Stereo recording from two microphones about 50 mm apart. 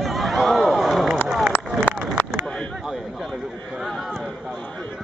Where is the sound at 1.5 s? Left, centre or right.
Left.